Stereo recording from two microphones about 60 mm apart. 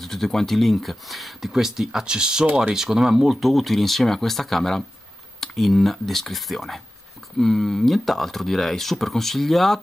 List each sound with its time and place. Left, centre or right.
0.0 s speech: centre